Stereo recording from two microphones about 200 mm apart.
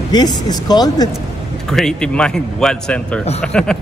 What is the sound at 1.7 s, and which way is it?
A man's voice, 5° left (ahead or behind).